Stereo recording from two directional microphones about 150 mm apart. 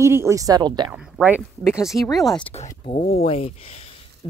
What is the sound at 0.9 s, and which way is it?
Speech, 10° right (ahead or behind).